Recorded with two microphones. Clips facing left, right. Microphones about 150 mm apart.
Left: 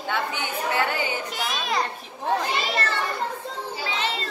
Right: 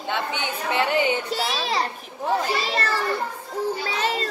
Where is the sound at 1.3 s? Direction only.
35° right (ahead or behind).